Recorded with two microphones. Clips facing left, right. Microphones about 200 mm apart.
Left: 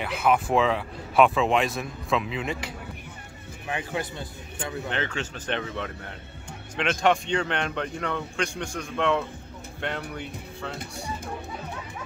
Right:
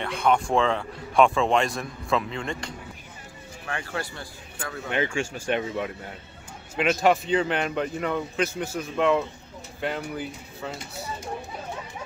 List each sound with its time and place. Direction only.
0.0 s a man's voice: 5° left (ahead or behind)
3.6 s speech: 20° left (ahead or behind)
4.8 s a man's voice: 10° right (ahead or behind)